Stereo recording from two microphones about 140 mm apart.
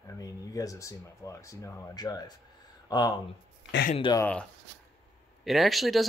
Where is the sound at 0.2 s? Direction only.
25° left (ahead or behind).